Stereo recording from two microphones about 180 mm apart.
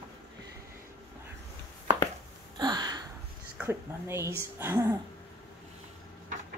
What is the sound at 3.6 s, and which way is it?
Speech, 10° right (ahead or behind).